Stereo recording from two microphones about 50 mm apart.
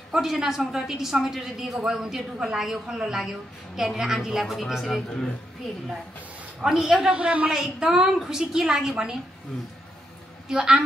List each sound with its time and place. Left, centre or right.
0.1 s a woman's voice: centre
6.6 s a woman's voice: centre
6.9 s a man's voice: centre
7.5 s a woman's voice: centre
10.5 s a woman's voice: centre